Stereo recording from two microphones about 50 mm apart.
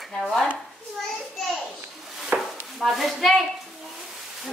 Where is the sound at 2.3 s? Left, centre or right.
Right.